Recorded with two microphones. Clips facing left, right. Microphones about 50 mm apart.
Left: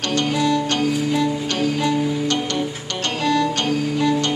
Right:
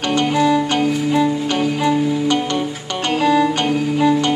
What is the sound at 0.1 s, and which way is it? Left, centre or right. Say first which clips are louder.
Music: right 4 dB; centre.